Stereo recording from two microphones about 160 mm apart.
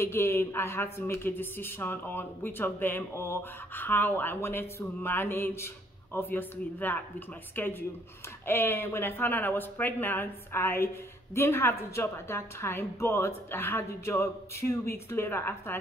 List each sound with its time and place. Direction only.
0.0 s speech: 15° left (ahead or behind)